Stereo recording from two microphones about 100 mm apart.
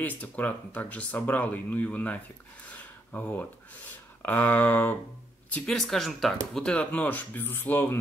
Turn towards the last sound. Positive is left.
turn(degrees=20)  # may be behind; listen again after turning